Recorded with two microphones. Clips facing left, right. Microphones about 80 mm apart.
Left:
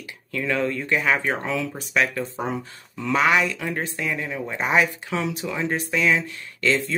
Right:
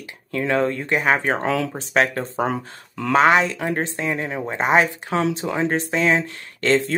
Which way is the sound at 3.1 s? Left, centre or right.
Right.